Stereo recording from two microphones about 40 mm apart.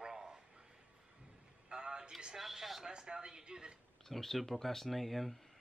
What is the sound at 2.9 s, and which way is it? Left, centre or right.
Speech, right.